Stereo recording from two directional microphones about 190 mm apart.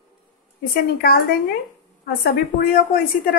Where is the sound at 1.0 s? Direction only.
55° left (ahead or behind).